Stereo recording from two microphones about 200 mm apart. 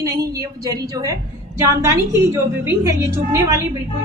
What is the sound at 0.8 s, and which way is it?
A woman's voice, 15° right (ahead or behind).